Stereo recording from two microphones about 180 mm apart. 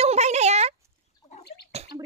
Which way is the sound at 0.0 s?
40° right (ahead or behind).